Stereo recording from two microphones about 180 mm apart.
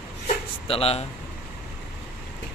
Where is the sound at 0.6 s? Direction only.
30° left (ahead or behind).